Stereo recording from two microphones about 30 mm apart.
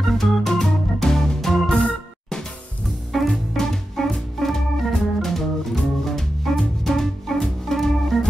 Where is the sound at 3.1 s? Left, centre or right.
Centre.